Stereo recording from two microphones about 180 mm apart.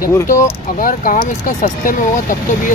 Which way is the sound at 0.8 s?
50° left (ahead or behind).